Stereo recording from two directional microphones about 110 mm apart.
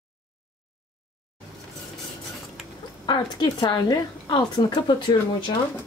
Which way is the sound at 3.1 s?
40° left (ahead or behind).